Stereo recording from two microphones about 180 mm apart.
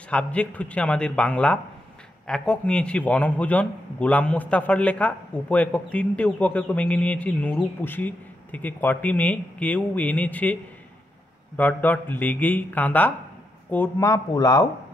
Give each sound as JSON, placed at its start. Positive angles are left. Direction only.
{"t": 0.1, "sound": "a man's voice", "side_deg": 5}